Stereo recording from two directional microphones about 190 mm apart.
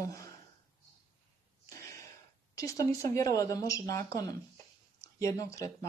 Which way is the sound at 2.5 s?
15° left (ahead or behind).